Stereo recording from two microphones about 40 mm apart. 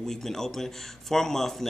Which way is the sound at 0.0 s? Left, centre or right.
Centre.